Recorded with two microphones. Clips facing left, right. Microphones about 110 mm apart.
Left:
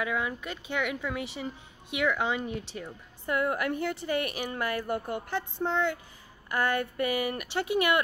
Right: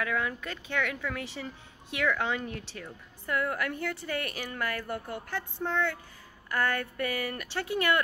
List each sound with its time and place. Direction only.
0.0 s a woman's voice: 15° left (ahead or behind)